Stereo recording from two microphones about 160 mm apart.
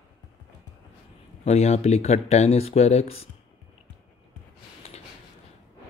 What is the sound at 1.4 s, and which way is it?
Speech, 40° left (ahead or behind).